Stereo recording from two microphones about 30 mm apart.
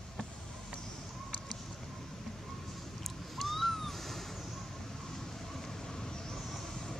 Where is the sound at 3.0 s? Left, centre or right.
Centre.